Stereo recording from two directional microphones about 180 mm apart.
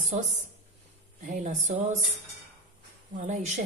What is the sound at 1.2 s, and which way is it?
Speech, 45° right (ahead or behind).